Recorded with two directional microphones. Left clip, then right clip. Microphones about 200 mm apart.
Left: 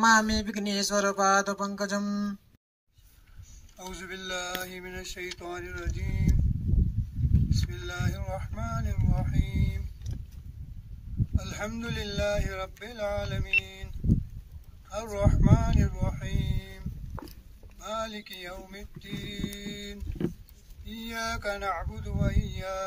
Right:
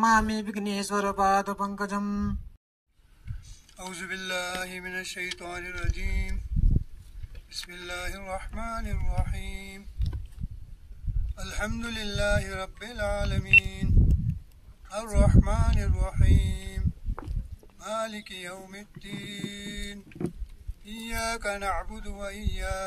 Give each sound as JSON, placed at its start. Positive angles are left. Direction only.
{"t": 0.0, "sound": "speech", "side_deg": -5}
{"t": 3.7, "sound": "speech", "side_deg": 0}
{"t": 7.4, "sound": "speech", "side_deg": 0}
{"t": 11.3, "sound": "speech", "side_deg": 0}
{"t": 13.7, "sound": "a sound", "side_deg": 0}
{"t": 14.9, "sound": "speech", "side_deg": 0}
{"t": 17.2, "sound": "a sound", "side_deg": -70}
{"t": 17.7, "sound": "speech", "side_deg": -5}